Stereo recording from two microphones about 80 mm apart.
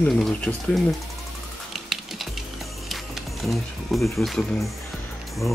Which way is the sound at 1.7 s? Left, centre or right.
Centre.